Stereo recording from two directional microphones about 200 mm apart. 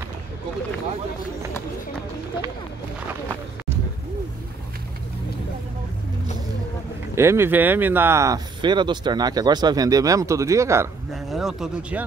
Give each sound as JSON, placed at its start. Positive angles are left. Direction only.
{"t": 7.2, "sound": "speech", "side_deg": -10}
{"t": 11.2, "sound": "speech", "side_deg": 0}